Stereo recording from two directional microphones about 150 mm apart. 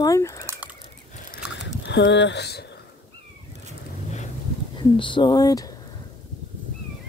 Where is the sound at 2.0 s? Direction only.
90° left.